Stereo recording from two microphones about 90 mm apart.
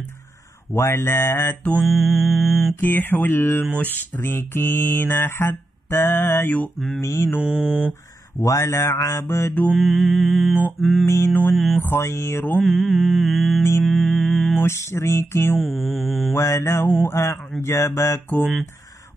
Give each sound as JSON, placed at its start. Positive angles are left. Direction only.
{"t": 0.7, "sound": "mantra", "side_deg": 30}
{"t": 1.9, "sound": "mantra", "side_deg": 0}
{"t": 2.8, "sound": "mantra", "side_deg": 20}
{"t": 7.0, "sound": "mantra", "side_deg": 35}
{"t": 7.4, "sound": "mantra", "side_deg": -15}
{"t": 8.4, "sound": "mantra", "side_deg": 35}
{"t": 9.8, "sound": "mantra", "side_deg": 0}
{"t": 11.1, "sound": "mantra", "side_deg": 30}
{"t": 11.5, "sound": "mantra", "side_deg": 0}
{"t": 11.8, "sound": "mantra", "side_deg": 30}
{"t": 12.5, "sound": "mantra", "side_deg": 0}
{"t": 14.6, "sound": "mantra", "side_deg": 30}
{"t": 15.8, "sound": "mantra", "side_deg": 0}
{"t": 16.3, "sound": "mantra", "side_deg": 35}